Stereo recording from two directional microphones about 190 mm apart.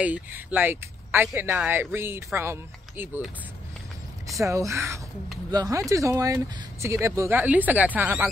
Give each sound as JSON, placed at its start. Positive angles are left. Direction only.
{"t": 0.0, "sound": "speech", "side_deg": -10}
{"t": 4.4, "sound": "speech", "side_deg": -15}